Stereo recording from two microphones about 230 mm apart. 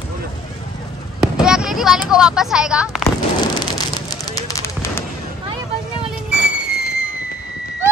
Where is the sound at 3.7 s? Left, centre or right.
Centre.